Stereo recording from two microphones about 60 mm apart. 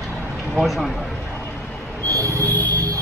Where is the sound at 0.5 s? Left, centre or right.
Centre.